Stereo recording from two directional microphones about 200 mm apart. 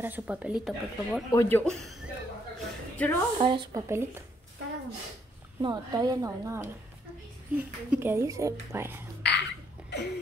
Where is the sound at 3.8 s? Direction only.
10° right (ahead or behind).